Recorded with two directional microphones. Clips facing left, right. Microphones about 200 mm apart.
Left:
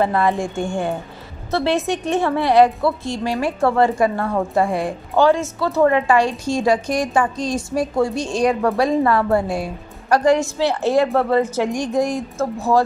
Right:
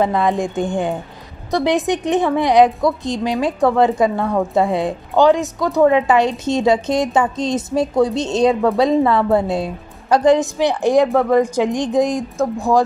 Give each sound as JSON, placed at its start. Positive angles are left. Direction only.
{"t": 0.0, "sound": "a woman's voice", "side_deg": -15}